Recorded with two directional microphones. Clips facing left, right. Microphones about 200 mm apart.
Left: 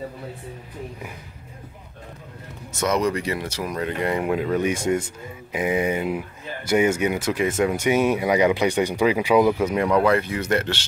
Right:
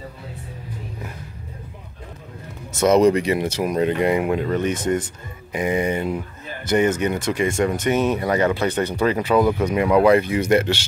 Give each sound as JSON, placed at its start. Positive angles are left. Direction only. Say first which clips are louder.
{"t": 2.8, "sound": "speech", "louder": "right 7 dB", "side_deg": -25}
{"t": 4.2, "sound": "speech", "louder": "right 1 dB", "side_deg": 0}
{"t": 9.8, "sound": "speech", "louder": "right 6 dB", "side_deg": -10}